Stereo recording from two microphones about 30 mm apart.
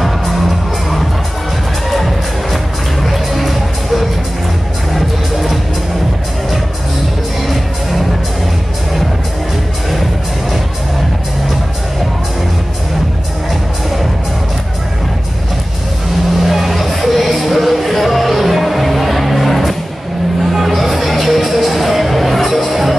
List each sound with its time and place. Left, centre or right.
1.9 s music: centre
16.4 s music: centre